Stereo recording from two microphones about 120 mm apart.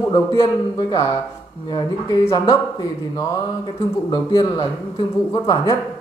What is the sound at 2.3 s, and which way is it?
Mantra, 35° left (ahead or behind).